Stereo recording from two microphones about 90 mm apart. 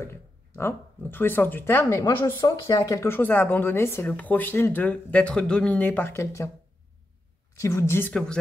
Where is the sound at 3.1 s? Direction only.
25° left (ahead or behind).